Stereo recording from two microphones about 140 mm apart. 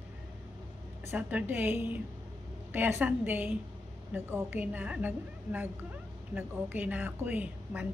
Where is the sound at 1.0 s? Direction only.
15° right (ahead or behind).